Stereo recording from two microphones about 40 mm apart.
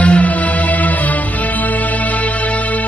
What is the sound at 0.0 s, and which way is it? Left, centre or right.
Music, left.